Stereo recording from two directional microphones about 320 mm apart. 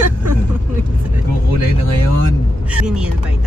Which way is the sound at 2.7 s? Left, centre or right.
Centre.